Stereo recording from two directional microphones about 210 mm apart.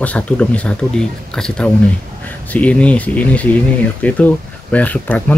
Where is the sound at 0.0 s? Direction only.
5° left (ahead or behind).